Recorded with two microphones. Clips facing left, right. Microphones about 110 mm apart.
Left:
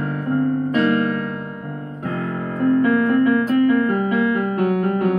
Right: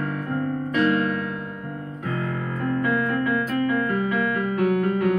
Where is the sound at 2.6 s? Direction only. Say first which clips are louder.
Left 8 dB; 35° left (ahead or behind).